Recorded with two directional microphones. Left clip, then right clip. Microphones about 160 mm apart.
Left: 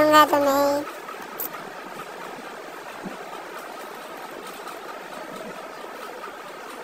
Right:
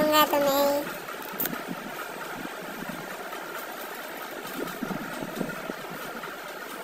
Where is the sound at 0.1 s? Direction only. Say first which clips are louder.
Left 5 dB; 15° left (ahead or behind).